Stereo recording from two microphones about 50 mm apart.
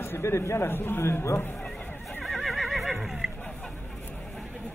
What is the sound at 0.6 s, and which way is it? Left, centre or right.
Speech, left.